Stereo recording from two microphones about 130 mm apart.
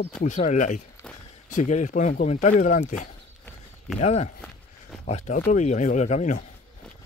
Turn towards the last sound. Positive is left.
turn(degrees=70)  # may be behind; listen again after turning